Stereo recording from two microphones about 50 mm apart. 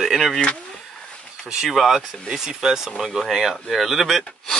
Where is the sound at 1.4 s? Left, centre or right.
Centre.